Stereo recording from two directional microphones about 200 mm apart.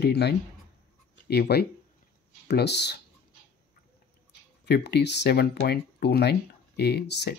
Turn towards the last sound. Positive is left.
turn(degrees=60)  # may be behind; listen again after turning